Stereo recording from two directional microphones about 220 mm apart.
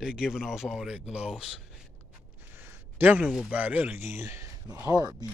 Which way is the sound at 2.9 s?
5° right (ahead or behind).